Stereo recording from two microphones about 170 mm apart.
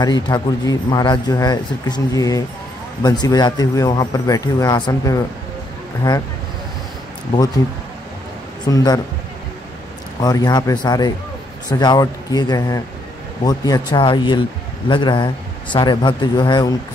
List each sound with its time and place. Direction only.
0.0 s speech: 25° left (ahead or behind)
8.6 s speech: 20° left (ahead or behind)
10.2 s speech: 25° left (ahead or behind)